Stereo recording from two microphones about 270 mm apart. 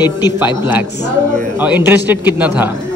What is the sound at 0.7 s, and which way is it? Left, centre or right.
Speech, centre.